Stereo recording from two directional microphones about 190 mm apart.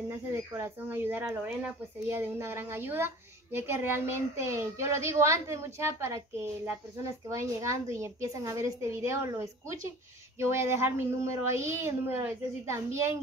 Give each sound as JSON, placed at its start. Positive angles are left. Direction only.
{"t": 0.3, "sound": "speech", "side_deg": -10}